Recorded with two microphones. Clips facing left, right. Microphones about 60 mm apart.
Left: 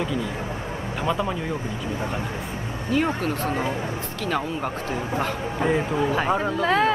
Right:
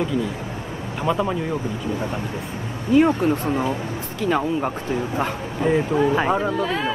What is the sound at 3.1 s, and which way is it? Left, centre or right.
Speech, right.